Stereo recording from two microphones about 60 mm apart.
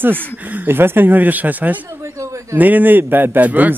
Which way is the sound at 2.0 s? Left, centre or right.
Right.